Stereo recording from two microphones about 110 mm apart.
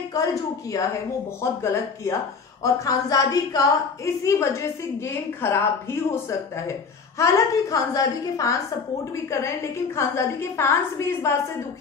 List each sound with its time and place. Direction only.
0.1 s a woman's voice: 30° left (ahead or behind)